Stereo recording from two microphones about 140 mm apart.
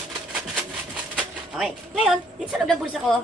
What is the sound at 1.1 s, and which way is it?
Speech, 5° right (ahead or behind).